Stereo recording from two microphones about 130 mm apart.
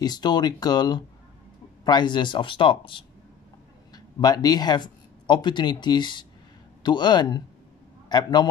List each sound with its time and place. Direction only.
0.0 s speech: 30° left (ahead or behind)